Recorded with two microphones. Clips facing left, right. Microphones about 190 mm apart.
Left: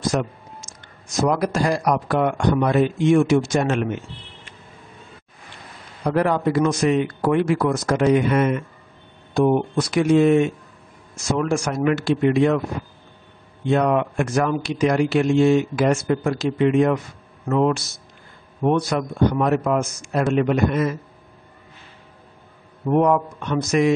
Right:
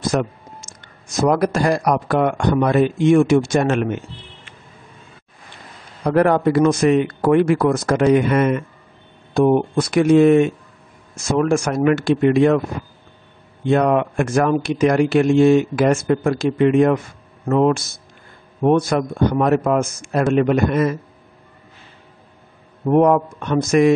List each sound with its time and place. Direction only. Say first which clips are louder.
0.1 s speech: right 3 dB; 55° right (ahead or behind)
6.0 s speech: right 4 dB; 55° right (ahead or behind)
13.7 s speech: right 3 dB; 50° right (ahead or behind)
22.8 s speech: right 4 dB; 45° right (ahead or behind)